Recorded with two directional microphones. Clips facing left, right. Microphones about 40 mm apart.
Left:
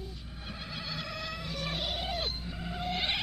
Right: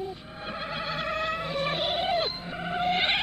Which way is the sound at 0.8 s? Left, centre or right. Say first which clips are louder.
Right 9 dB; right.